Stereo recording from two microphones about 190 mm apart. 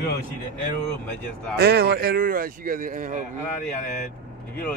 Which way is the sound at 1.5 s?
55° right (ahead or behind).